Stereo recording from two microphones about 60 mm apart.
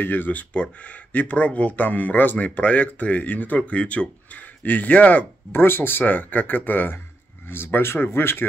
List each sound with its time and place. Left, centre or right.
0.0 s speech: left
5.5 s speech: left